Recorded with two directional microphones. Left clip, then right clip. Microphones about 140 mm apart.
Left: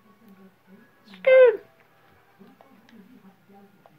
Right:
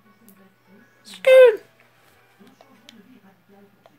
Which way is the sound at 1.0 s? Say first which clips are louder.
Right 4 dB; 20° right (ahead or behind).